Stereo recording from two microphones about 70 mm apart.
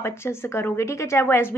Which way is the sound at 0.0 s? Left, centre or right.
Left.